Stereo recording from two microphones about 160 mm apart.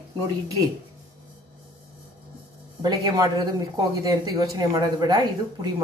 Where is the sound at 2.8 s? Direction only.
25° right (ahead or behind).